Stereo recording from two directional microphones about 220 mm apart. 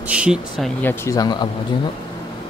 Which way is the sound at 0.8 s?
10° left (ahead or behind).